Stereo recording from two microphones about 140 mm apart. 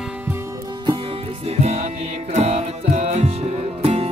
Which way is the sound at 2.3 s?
55° right (ahead or behind).